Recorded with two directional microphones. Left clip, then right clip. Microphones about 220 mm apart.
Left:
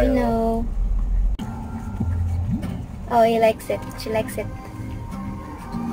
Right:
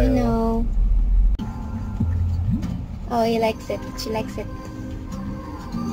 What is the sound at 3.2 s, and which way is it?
Speech, 10° left (ahead or behind).